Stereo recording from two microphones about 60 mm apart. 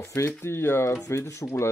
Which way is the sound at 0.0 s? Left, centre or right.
Left.